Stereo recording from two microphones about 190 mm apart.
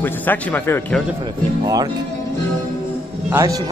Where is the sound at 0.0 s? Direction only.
10° left (ahead or behind).